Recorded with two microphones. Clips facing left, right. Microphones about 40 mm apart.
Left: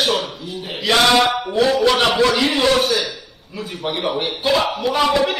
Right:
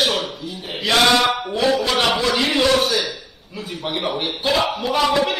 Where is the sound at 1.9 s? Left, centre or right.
Left.